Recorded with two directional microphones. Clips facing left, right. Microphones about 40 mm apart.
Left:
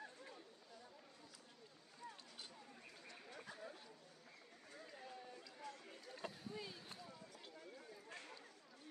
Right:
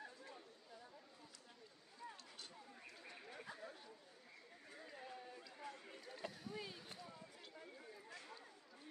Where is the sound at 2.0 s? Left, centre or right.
Right; by 3.9 s centre.